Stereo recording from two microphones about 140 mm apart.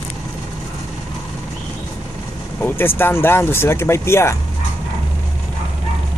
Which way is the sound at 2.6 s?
15° left (ahead or behind).